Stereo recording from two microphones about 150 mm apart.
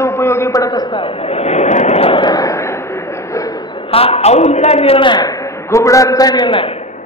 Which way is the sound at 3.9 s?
40° left (ahead or behind).